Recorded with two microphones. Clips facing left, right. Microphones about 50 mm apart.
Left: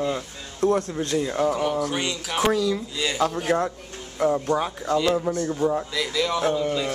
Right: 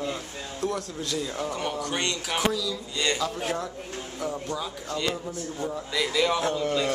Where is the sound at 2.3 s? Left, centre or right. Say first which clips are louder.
Left 7 dB; left.